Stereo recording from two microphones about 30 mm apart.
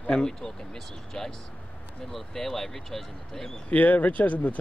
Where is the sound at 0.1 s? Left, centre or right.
Centre.